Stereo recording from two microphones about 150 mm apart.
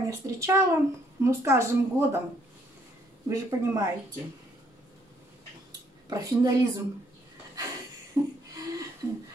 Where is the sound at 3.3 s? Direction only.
20° right (ahead or behind).